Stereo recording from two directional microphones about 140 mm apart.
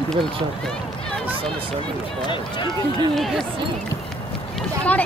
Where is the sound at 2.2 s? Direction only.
35° left (ahead or behind).